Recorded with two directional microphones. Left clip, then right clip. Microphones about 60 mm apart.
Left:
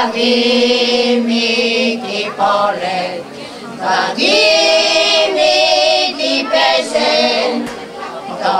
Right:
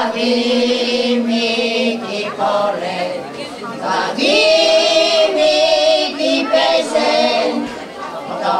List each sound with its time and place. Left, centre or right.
0.0 s mantra: left
3.8 s choir: left